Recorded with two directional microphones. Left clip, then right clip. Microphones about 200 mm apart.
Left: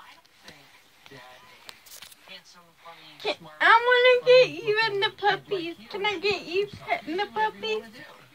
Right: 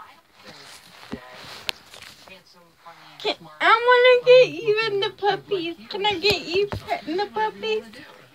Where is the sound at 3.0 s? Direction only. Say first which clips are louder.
Right 4 dB; 15° right (ahead or behind); by 6.0 s 5° left (ahead or behind).